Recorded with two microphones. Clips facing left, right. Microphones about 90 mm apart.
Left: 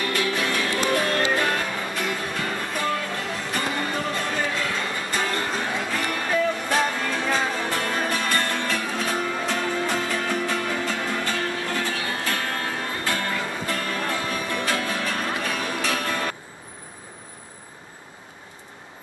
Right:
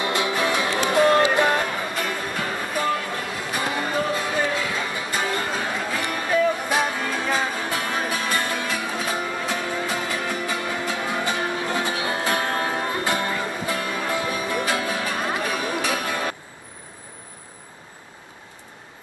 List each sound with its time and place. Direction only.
0.0 s music: 20° right (ahead or behind)
2.0 s music: 5° right (ahead or behind)